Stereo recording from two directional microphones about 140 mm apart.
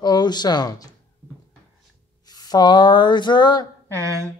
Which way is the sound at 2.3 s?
30° left (ahead or behind).